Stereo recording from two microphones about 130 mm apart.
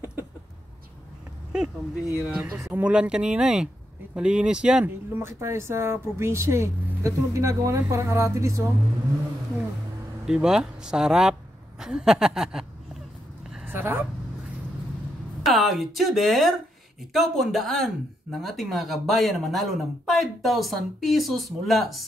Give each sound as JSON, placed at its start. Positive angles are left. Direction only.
{"t": 1.5, "sound": "speech", "side_deg": -5}
{"t": 5.1, "sound": "a woman's voice", "side_deg": -20}
{"t": 10.2, "sound": "speech", "side_deg": -5}
{"t": 13.7, "sound": "a woman's voice", "side_deg": -15}
{"t": 15.4, "sound": "speech", "side_deg": 0}